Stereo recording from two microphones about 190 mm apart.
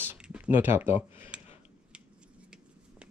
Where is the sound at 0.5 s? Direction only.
10° right (ahead or behind).